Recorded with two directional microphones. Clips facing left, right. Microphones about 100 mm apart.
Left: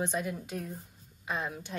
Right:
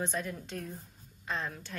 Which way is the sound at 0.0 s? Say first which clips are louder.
Left 3 dB; 10° left (ahead or behind).